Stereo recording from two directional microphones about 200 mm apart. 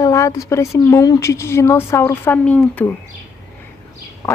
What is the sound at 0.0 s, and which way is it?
A woman's voice, 15° left (ahead or behind).